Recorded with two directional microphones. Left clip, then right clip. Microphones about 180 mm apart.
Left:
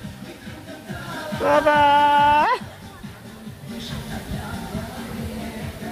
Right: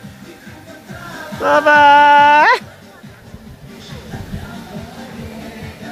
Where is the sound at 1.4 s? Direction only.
20° right (ahead or behind); by 2.6 s 45° right (ahead or behind).